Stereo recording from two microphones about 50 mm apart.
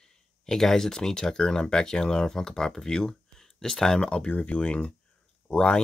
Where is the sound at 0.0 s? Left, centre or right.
Centre.